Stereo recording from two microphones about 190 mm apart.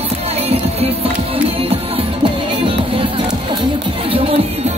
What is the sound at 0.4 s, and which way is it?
Music, 30° right (ahead or behind).